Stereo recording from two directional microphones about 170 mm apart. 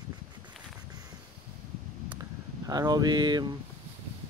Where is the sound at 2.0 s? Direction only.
20° right (ahead or behind).